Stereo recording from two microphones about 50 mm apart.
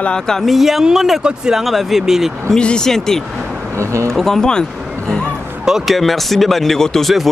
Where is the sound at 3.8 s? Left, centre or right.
Right.